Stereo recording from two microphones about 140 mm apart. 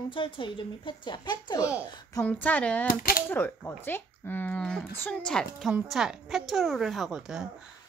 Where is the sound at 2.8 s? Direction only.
90° left.